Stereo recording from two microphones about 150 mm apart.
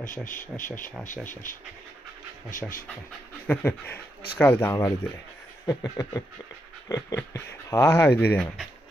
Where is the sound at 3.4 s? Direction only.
10° left (ahead or behind).